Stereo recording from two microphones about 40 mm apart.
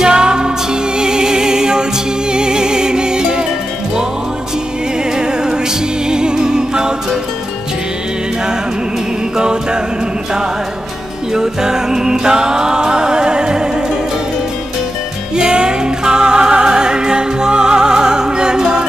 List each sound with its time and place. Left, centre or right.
0.0 s music: centre
5.1 s music: centre
9.4 s a capella: right
11.3 s music: centre
15.3 s music: centre